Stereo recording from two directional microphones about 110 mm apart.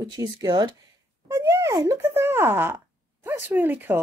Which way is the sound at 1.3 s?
30° right (ahead or behind).